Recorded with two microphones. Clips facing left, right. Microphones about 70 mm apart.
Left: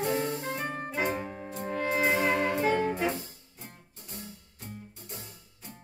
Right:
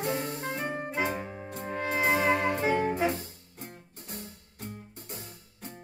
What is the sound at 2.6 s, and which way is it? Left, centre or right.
Music, centre.